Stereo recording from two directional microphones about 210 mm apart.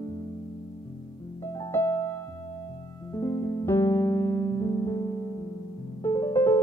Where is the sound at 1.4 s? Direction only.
15° left (ahead or behind).